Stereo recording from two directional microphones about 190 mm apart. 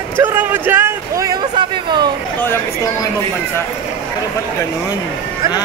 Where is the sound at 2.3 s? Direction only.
10° left (ahead or behind).